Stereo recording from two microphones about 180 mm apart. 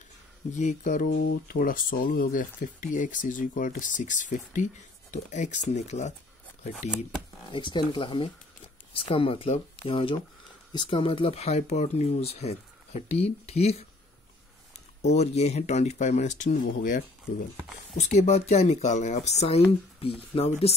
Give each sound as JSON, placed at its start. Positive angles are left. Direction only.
{"t": 0.5, "sound": "speech", "side_deg": 40}
{"t": 1.1, "sound": "speech", "side_deg": 65}
{"t": 7.5, "sound": "speech", "side_deg": 25}
{"t": 15.0, "sound": "speech", "side_deg": 40}